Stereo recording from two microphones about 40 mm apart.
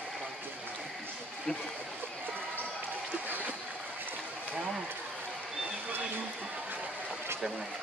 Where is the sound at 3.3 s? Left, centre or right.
Right.